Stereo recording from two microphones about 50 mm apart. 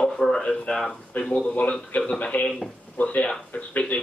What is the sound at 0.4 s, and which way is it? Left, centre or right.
Speech, centre.